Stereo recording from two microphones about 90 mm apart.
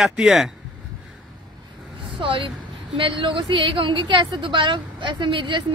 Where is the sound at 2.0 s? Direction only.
70° right (ahead or behind).